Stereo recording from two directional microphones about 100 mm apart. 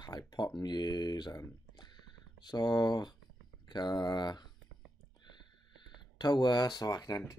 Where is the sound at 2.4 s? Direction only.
45° left (ahead or behind).